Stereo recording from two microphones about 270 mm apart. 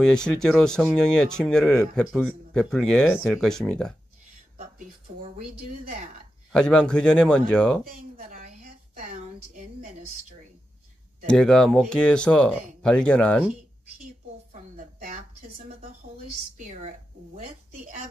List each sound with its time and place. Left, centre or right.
0.0 s speech: centre
6.5 s speech: centre
8.2 s a sound: right
11.2 s speech: centre
14.5 s a sound: right
16.5 s a woman's voice: right